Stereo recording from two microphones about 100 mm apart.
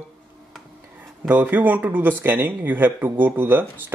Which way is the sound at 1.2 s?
20° right (ahead or behind).